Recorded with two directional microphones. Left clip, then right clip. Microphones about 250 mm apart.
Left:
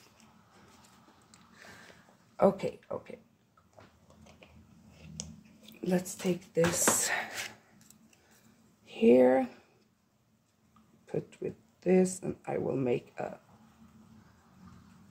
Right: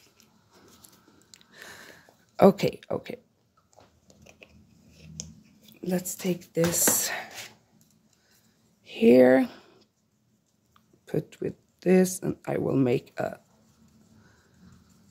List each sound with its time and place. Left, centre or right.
1.3 s a sound: right
2.3 s speech: right
5.0 s a sound: centre
6.2 s speech: right
8.8 s speech: right
11.1 s speech: right